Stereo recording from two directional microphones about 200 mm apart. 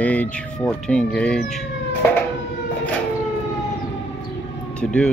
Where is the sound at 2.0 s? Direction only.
10° left (ahead or behind).